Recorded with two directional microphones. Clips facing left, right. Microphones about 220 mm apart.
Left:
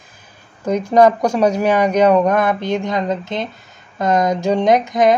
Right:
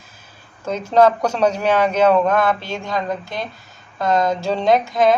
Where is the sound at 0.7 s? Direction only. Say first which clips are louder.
Left 3 dB; 15° left (ahead or behind).